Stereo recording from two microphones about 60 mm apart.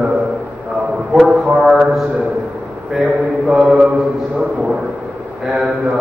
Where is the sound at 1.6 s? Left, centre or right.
Centre.